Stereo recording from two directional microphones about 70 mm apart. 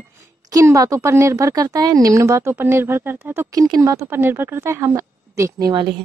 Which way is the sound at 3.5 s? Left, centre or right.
Right.